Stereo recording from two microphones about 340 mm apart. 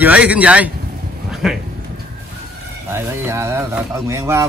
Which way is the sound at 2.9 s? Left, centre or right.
Centre.